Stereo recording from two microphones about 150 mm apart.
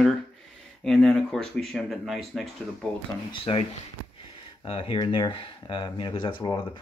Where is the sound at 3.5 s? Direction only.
40° left (ahead or behind).